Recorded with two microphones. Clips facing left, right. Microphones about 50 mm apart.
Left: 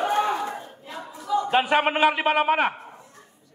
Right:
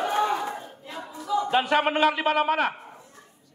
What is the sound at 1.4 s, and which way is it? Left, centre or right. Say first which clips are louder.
A man's voice: left 2 dB; centre.